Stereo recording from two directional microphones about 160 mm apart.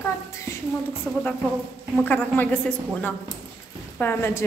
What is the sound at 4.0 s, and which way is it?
Speech, 15° left (ahead or behind).